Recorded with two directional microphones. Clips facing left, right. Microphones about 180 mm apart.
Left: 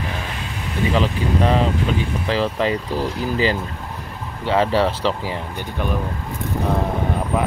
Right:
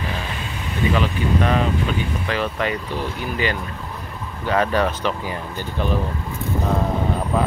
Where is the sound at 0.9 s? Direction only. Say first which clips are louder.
Left 2 dB; 25° left (ahead or behind).